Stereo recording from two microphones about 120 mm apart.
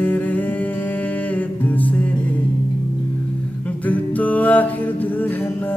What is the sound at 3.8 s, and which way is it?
Music, 15° left (ahead or behind).